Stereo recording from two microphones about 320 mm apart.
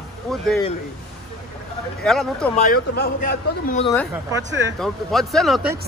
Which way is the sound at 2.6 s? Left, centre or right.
Left.